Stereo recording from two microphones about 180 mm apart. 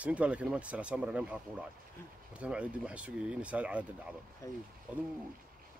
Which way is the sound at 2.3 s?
5° right (ahead or behind).